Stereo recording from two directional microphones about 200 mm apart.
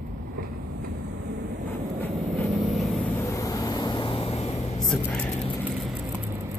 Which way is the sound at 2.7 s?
10° left (ahead or behind).